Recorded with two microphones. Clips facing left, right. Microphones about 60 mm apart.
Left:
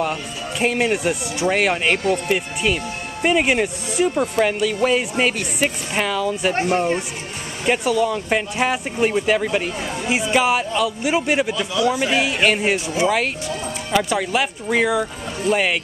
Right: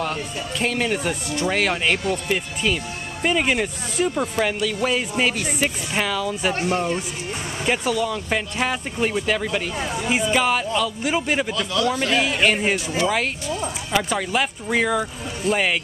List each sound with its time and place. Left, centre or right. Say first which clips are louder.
0.0 s speech: left 2 dB; centre
6.5 s speech: left 4 dB; left
7.6 s speech: left 4 dB; centre
12.7 s speech: left 2 dB; left
13.9 s speech: left 3 dB; centre